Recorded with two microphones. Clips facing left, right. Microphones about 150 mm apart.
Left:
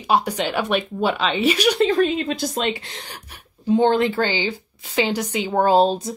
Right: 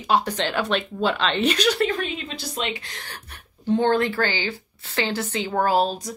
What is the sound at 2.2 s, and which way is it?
Speech, 45° left (ahead or behind).